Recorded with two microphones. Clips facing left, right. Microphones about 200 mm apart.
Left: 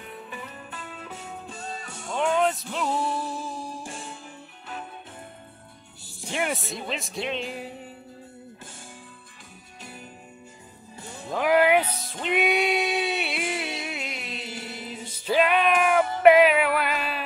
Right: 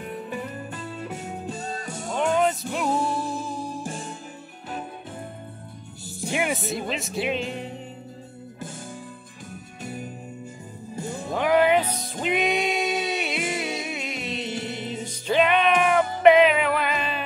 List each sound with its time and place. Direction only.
0.0 s music: 45° right (ahead or behind)
2.1 s music: 5° right (ahead or behind)
6.2 s speech: 5° right (ahead or behind)
11.0 s music: 45° right (ahead or behind)
11.3 s music: 5° left (ahead or behind)
12.9 s music: 40° right (ahead or behind)
13.8 s music: centre (ahead or behind)